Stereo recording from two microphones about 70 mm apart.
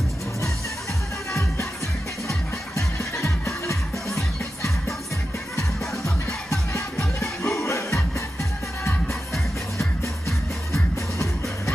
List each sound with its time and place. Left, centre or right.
2.2 s music: left
9.8 s music: left